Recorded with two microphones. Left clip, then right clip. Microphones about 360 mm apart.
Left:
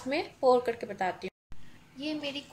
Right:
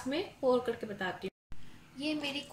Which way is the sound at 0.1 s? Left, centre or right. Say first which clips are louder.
Left 5 dB; centre.